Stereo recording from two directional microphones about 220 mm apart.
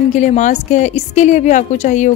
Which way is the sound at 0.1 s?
35° left (ahead or behind).